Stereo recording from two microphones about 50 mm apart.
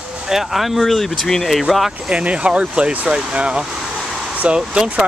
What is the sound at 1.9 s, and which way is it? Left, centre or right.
Speech, right.